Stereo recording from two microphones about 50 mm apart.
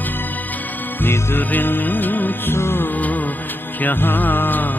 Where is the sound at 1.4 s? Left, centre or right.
Left.